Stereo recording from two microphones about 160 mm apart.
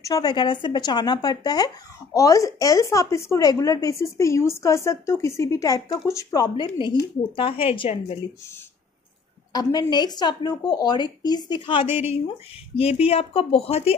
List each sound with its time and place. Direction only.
0.0 s speech: 25° left (ahead or behind)
9.5 s speech: 25° left (ahead or behind)
11.9 s a woman's voice: 10° right (ahead or behind)
12.7 s speech: 40° left (ahead or behind)